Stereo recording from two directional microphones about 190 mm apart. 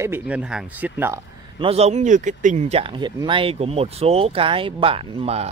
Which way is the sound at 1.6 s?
30° right (ahead or behind).